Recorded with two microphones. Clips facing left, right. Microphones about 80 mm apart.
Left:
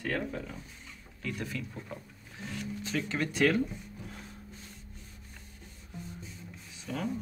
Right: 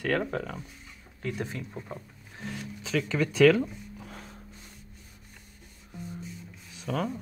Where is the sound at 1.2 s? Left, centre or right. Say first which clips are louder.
Right 3 dB; right.